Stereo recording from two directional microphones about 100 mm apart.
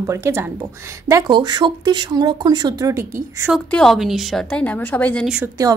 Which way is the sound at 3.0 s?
25° right (ahead or behind).